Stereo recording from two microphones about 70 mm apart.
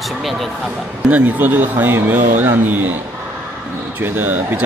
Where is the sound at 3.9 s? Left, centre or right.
Right.